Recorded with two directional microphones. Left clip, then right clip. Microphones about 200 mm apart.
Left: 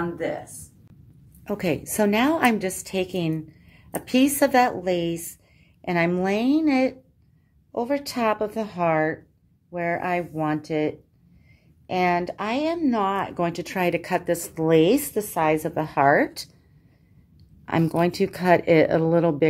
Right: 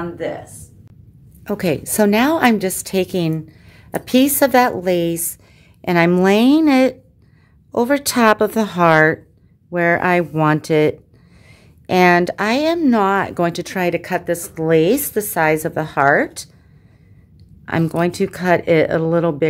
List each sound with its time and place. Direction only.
0.0 s speech: 5° left (ahead or behind)
1.4 s a woman's voice: 15° right (ahead or behind); by 16.4 s centre (ahead or behind)
17.6 s speech: centre (ahead or behind)